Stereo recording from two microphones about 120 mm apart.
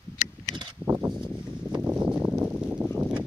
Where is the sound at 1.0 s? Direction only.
5° right (ahead or behind).